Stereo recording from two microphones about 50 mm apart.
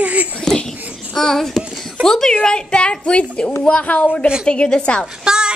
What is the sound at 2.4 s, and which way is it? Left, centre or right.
A woman's voice, centre.